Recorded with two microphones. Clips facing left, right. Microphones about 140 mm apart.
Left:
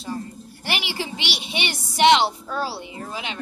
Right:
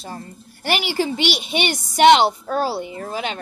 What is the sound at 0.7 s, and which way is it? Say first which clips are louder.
A woman's voice: right 7 dB; 45° right (ahead or behind).